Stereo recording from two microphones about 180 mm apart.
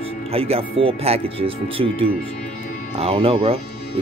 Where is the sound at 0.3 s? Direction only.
30° right (ahead or behind).